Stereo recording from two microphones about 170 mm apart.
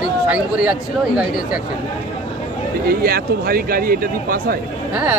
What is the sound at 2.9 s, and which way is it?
Speech, 60° right (ahead or behind).